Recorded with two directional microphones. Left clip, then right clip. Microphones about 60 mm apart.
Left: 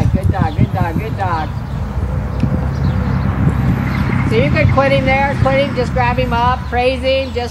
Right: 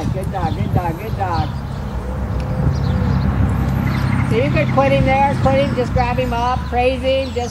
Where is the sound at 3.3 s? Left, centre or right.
Left.